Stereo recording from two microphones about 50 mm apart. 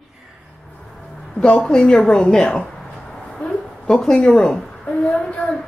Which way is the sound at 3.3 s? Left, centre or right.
Centre.